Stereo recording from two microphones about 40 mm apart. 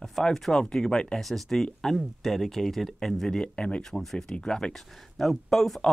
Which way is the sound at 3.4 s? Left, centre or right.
Left.